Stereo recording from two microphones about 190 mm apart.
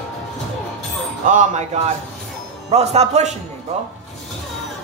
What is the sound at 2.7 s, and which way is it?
Speech, 35° right (ahead or behind).